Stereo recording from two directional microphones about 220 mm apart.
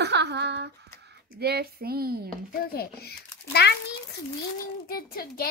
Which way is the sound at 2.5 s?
45° left (ahead or behind).